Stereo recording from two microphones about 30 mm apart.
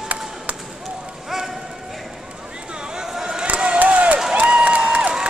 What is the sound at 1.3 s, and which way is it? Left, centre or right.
Run, centre.